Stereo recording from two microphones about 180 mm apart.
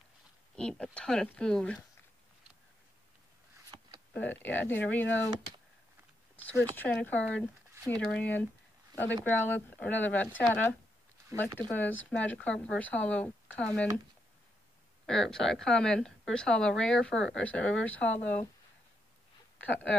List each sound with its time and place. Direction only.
0.6 s speech: 5° left (ahead or behind)
3.5 s a sound: 25° right (ahead or behind)
4.3 s speech: 10° left (ahead or behind)
6.7 s speech: 10° left (ahead or behind)
15.0 s speech: centre (ahead or behind)
19.6 s speech: 10° left (ahead or behind)